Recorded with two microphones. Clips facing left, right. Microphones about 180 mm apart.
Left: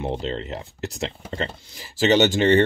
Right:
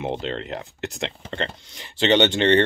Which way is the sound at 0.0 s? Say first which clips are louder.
Even; centre (ahead or behind).